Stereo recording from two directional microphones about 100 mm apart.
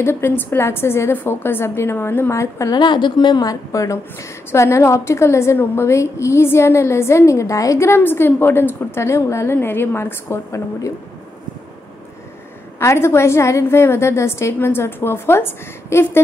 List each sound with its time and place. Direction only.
0.0 s a woman's voice: 25° left (ahead or behind)
2.8 s a woman's voice: 50° left (ahead or behind); by 10.9 s 30° left (ahead or behind)
12.7 s a woman's voice: 25° left (ahead or behind)